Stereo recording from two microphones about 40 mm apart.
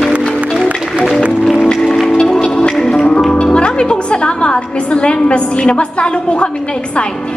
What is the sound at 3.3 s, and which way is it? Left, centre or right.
Speech, left.